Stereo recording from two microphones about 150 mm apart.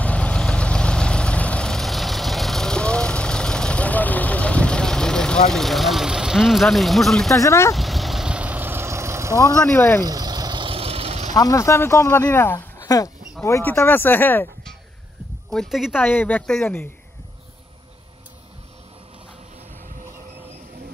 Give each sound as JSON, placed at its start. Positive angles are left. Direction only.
{"t": 0.0, "sound": "vehicle", "side_deg": 10}
{"t": 7.3, "sound": "speech", "side_deg": 20}
{"t": 7.7, "sound": "vehicle", "side_deg": 0}
{"t": 9.6, "sound": "speech", "side_deg": 15}
{"t": 10.0, "sound": "vehicle", "side_deg": -25}
{"t": 11.3, "sound": "speech", "side_deg": 20}
{"t": 15.5, "sound": "speech", "side_deg": 0}
{"t": 16.0, "sound": "speech", "side_deg": 10}